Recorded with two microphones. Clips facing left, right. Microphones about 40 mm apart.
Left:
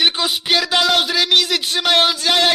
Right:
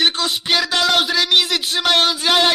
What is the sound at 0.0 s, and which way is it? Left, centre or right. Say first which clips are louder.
Music: left 1 dB; centre.